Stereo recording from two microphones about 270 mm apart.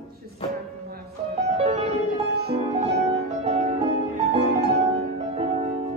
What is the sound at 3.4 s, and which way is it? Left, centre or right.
Music, right.